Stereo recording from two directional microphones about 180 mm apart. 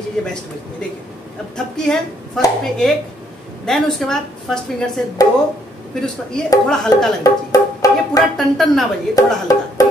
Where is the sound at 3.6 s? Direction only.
Centre (ahead or behind).